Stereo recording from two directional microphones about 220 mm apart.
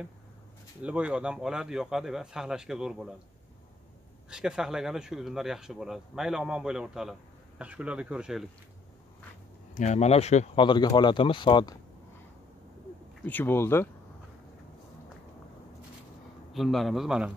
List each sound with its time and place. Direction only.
0.8 s speech: 5° right (ahead or behind)
4.3 s speech: 5° right (ahead or behind)
9.8 s speech: 30° left (ahead or behind)
13.2 s speech: 10° left (ahead or behind)
16.5 s speech: centre (ahead or behind)